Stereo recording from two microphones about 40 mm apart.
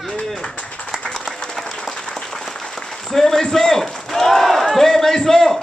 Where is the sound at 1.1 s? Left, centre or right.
Centre.